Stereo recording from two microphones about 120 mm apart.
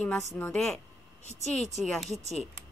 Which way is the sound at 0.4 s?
5° left (ahead or behind).